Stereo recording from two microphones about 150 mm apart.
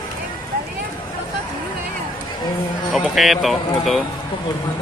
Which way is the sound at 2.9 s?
Centre (ahead or behind).